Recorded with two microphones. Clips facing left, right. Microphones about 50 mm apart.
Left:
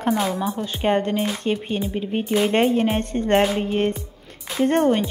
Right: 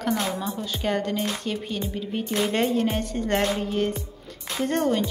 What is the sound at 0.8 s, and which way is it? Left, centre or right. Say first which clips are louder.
Speech: left 6 dB; left.